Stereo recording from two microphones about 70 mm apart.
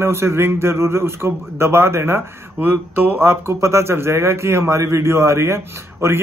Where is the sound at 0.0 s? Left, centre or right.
Right.